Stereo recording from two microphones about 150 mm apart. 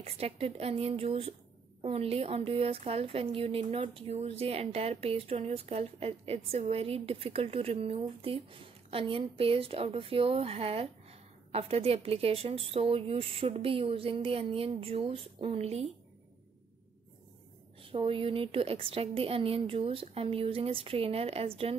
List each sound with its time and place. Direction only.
0.0 s speech: 40° right (ahead or behind)
17.8 s speech: 40° right (ahead or behind)